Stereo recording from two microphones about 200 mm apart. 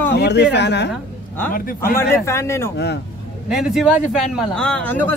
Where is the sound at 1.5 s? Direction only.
45° left (ahead or behind).